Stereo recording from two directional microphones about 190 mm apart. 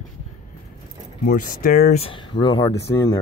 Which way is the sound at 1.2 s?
45° left (ahead or behind).